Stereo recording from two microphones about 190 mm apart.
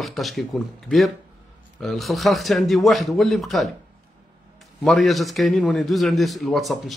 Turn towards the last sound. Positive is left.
turn(degrees=0)  # may be behind; listen again after turning